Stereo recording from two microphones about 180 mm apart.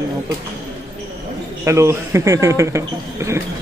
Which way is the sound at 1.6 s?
15° right (ahead or behind).